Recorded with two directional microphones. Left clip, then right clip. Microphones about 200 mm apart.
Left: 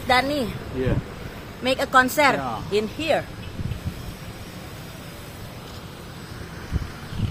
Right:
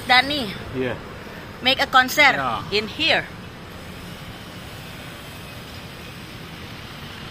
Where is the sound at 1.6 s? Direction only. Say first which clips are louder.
Right 2 dB; 50° left (ahead or behind).